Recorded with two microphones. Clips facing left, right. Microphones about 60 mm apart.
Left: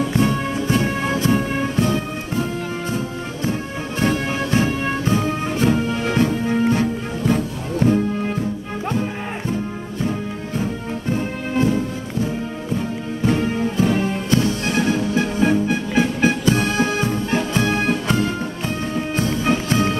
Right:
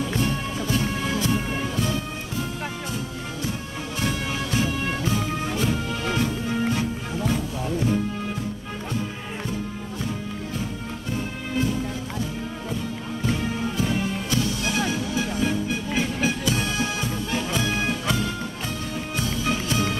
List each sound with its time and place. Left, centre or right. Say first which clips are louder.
0.2 s music: left 6 dB; left
4.0 s music: left 7 dB; left
13.2 s music: left 7 dB; left